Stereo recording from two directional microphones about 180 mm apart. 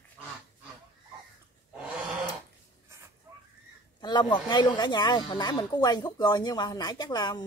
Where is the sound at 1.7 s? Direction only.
5° right (ahead or behind).